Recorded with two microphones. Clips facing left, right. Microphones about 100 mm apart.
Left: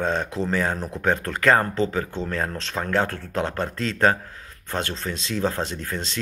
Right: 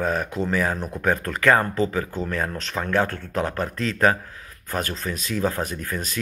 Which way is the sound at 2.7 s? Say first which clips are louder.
Right 1 dB; 25° left (ahead or behind).